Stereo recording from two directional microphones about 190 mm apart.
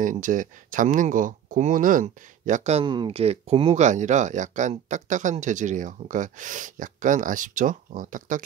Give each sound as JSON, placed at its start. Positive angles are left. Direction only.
{"t": 0.0, "sound": "speech", "side_deg": -45}